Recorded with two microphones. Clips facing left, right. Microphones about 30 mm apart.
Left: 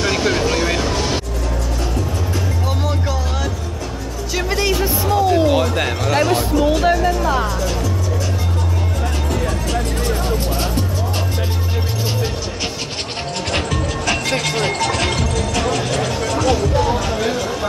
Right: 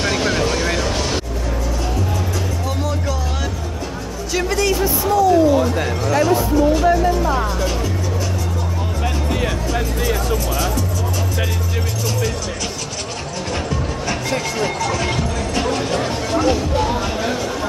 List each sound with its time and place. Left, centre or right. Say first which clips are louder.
0.0 s vehicle: left 1 dB; centre
2.8 s music: left 1 dB; centre
4.7 s music: right 1 dB; left
5.6 s music: even; left
6.3 s music: right 1 dB; left
13.5 s music: left 2 dB; left